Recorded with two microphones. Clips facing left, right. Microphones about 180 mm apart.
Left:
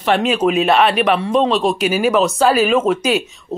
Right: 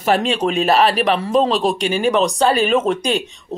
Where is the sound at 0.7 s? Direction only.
35° right (ahead or behind).